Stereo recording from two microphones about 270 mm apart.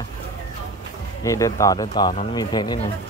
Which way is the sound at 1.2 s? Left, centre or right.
Centre.